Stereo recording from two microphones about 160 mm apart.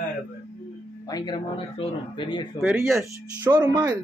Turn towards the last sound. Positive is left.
turn(degrees=-20)  # may be behind; listen again after turning